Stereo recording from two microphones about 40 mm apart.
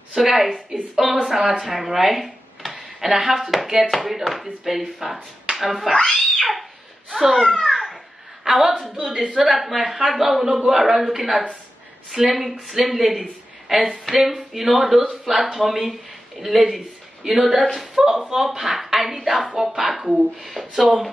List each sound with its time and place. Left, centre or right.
0.1 s a woman's voice: centre
2.7 s a sound: centre
3.3 s a woman's voice: centre
6.1 s cat: centre
7.1 s speech: centre
7.3 s children playing: centre
8.5 s a woman's voice: centre
10.8 s a woman's voice: centre